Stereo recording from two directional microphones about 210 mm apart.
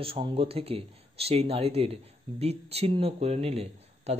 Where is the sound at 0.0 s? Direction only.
25° right (ahead or behind).